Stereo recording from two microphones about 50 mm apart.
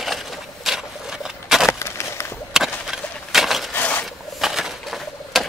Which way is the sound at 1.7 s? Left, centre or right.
Left.